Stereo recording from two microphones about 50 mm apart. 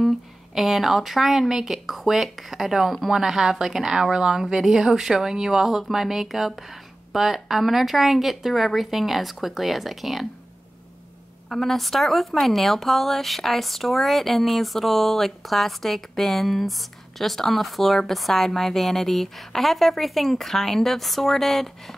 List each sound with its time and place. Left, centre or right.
0.6 s a woman's voice: centre
11.4 s a woman's voice: centre